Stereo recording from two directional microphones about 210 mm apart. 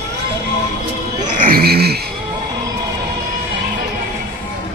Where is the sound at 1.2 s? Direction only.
45° right (ahead or behind).